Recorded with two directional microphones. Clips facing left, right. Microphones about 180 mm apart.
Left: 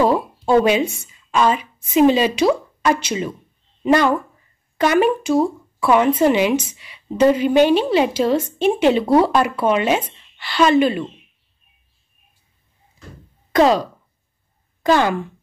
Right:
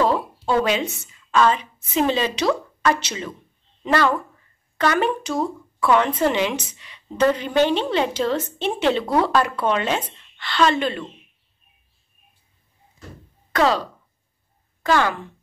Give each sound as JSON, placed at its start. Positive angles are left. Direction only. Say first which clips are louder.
{"t": 0.0, "sound": "a woman's voice", "louder": "left 3 dB", "side_deg": 15}
{"t": 13.5, "sound": "speech", "louder": "left 5 dB", "side_deg": 15}